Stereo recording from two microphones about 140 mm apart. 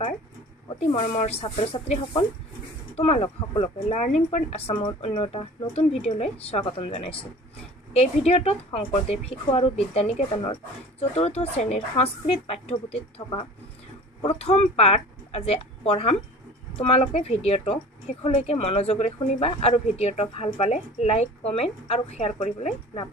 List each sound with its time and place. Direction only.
0.7 s a woman's voice: 45° left (ahead or behind)
12.7 s speech: 35° left (ahead or behind)
14.2 s a woman's voice: 45° left (ahead or behind)